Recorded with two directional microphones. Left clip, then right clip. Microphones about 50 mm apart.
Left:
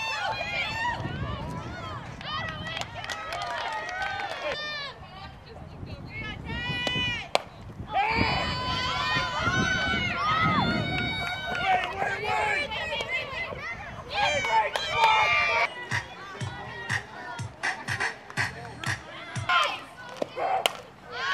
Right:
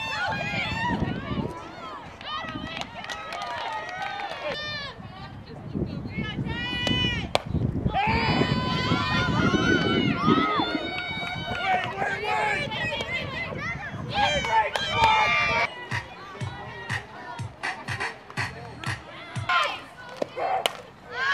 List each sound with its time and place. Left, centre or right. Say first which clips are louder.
0.0 s run: right 1 dB; centre
0.5 s run: right 1 dB; left
4.6 s sheep: right 1 dB; centre
6.1 s a sound: right 2 dB; centre
6.9 s chop: right 2 dB; centre
7.9 s a sound: even; centre
8.2 s run: right 2 dB; centre; by 9.5 s left
9.5 s run: right 2 dB; left
11.9 s run: right 1 dB; centre
14.1 s a sound: right 2 dB; centre
14.8 s run: right 1 dB; centre
15.9 s music: left 1 dB; left
19.4 s a sound: even; centre